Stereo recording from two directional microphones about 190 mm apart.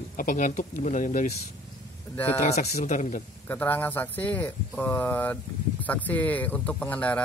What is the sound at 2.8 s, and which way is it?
Speech, 40° left (ahead or behind).